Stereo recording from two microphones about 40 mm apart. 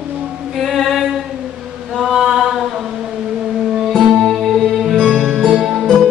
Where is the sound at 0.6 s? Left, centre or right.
Centre.